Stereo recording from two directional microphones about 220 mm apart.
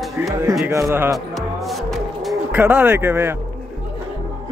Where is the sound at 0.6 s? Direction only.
15° right (ahead or behind).